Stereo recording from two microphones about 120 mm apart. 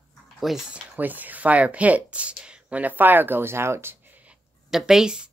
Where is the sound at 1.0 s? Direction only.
15° right (ahead or behind).